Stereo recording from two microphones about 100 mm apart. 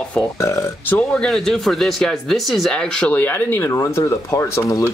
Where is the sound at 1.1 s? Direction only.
5° left (ahead or behind); by 4.8 s 35° left (ahead or behind).